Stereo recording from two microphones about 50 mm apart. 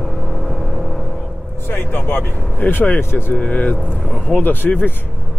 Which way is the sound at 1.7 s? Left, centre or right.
Left.